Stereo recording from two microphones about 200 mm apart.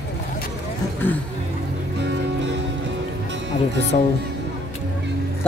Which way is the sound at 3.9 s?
40° left (ahead or behind).